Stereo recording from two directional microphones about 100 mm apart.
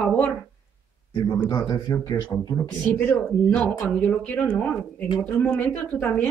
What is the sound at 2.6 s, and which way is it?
Speech, 15° left (ahead or behind).